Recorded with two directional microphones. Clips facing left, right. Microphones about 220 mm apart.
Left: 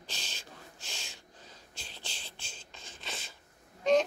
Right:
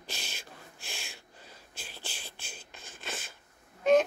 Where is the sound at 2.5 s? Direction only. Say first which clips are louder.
Right 2 dB; 55° right (ahead or behind).